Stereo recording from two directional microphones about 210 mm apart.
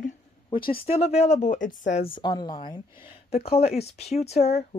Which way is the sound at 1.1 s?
35° left (ahead or behind).